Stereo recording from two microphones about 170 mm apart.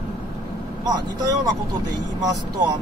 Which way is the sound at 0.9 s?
25° right (ahead or behind).